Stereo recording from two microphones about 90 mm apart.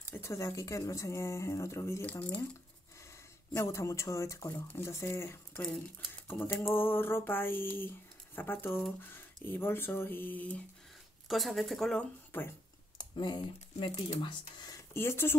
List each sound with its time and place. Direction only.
0.1 s speech: 35° left (ahead or behind)
2.0 s speech: 20° left (ahead or behind)
3.5 s speech: 35° left (ahead or behind)
6.2 s a sound: 25° left (ahead or behind)
6.6 s speech: 25° left (ahead or behind)
11.2 s speech: centre (ahead or behind)
12.3 s speech: 20° left (ahead or behind)
13.1 s speech: 55° left (ahead or behind)
15.0 s speech: 25° left (ahead or behind)